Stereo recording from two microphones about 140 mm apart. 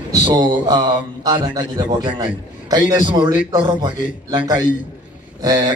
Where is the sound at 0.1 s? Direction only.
35° right (ahead or behind).